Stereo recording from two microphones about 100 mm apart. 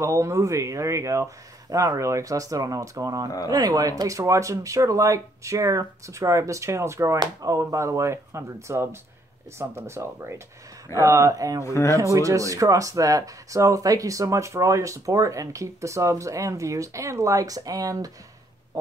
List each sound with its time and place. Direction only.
0.0 s speech: 30° right (ahead or behind)
11.6 s speech: 30° left (ahead or behind)
11.9 s speech: 30° right (ahead or behind)